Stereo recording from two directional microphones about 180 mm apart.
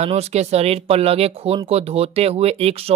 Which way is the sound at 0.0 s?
35° right (ahead or behind).